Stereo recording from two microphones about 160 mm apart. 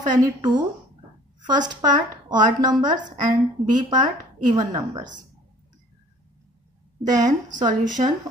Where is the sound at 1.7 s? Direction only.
25° right (ahead or behind).